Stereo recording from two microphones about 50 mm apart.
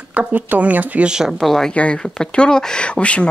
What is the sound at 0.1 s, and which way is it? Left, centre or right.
Speech, right.